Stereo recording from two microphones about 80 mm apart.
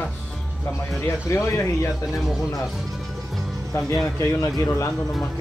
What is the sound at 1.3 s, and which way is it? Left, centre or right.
Speech, left.